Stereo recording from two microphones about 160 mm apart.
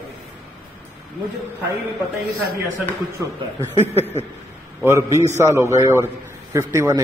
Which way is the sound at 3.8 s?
15° left (ahead or behind).